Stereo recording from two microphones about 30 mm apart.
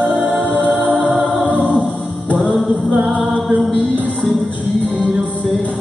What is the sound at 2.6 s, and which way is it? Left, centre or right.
Music, centre.